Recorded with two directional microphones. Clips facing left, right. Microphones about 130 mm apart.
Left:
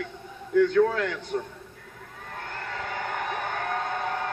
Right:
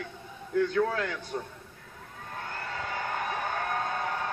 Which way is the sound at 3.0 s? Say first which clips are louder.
Left 1 dB; 20° left (ahead or behind).